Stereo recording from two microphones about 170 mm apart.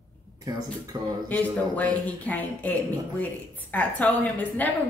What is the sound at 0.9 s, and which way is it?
Speech, 25° right (ahead or behind).